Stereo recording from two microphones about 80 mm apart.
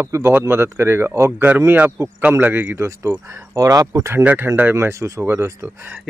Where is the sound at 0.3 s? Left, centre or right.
Right.